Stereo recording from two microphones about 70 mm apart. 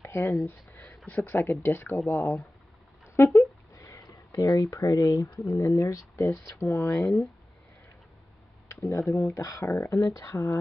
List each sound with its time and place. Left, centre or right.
0.0 s speech: left
1.1 s speech: left
3.3 s a sound: left
4.1 s speech: left
6.1 s speech: left
8.7 s speech: left